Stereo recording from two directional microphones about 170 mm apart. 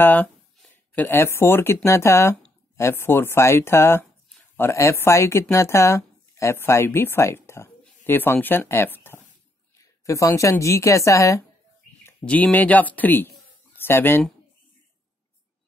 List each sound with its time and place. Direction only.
0.0 s a woman's voice: 10° left (ahead or behind)